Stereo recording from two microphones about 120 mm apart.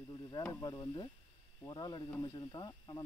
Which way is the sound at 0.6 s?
30° left (ahead or behind).